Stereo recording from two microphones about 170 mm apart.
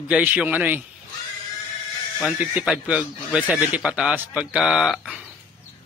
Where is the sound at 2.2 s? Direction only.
5° right (ahead or behind).